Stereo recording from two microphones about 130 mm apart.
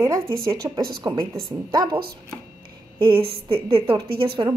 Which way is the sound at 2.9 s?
45° right (ahead or behind).